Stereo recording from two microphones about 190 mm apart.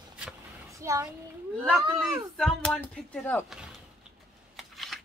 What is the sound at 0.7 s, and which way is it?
Speech, 15° right (ahead or behind).